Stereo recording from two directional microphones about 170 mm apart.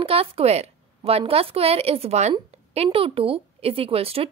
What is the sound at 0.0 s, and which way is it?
A woman's voice, 35° right (ahead or behind).